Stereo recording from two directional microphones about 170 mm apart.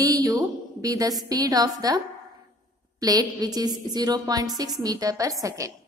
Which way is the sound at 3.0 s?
20° right (ahead or behind).